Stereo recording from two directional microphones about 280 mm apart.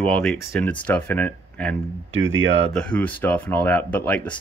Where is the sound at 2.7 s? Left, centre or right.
Centre.